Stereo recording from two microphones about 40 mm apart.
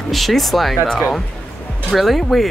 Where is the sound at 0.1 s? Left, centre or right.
Centre.